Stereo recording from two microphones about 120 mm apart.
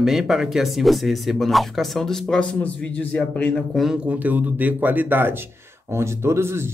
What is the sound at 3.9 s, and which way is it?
Speech, 15° right (ahead or behind).